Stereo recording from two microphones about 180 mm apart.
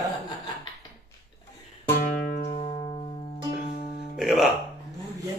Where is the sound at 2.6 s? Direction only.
30° left (ahead or behind).